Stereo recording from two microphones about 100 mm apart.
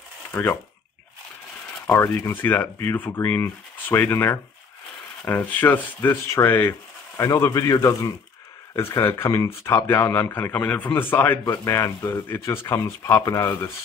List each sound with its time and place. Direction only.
0.3 s speech: 20° left (ahead or behind)
2.2 s speech: 20° left (ahead or behind)